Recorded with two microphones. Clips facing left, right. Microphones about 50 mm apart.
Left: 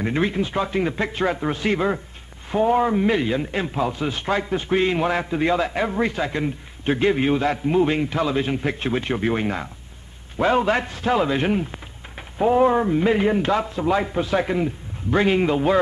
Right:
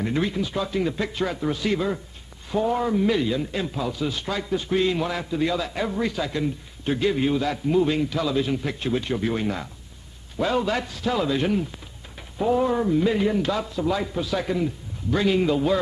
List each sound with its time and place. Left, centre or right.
0.0 s a man's voice: left